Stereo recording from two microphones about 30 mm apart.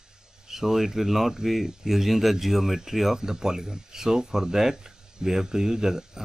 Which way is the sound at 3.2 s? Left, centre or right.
Centre.